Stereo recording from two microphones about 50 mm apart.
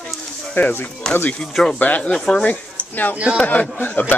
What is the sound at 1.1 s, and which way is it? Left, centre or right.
Speech, centre.